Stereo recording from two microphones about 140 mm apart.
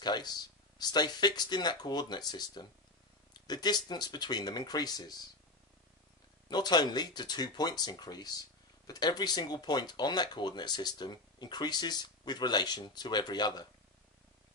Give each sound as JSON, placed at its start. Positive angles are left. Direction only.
{"t": 0.0, "sound": "speech", "side_deg": 30}
{"t": 6.5, "sound": "speech", "side_deg": 30}